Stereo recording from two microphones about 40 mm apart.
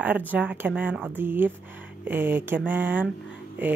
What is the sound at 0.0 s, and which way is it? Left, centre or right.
Speech, right.